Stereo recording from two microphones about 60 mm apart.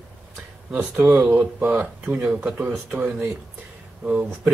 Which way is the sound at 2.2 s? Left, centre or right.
Centre.